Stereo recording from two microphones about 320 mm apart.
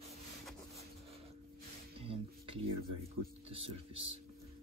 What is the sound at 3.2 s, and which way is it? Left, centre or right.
Speech, centre.